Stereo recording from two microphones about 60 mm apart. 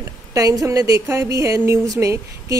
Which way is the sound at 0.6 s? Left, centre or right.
Right.